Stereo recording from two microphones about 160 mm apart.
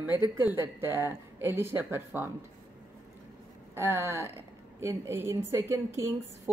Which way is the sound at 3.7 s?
15° right (ahead or behind).